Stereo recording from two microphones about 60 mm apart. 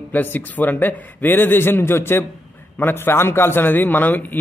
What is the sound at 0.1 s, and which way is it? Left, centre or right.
A man's voice, left.